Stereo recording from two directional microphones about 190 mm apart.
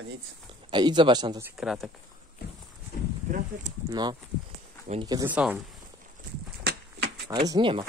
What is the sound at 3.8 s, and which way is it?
Speech, 20° right (ahead or behind).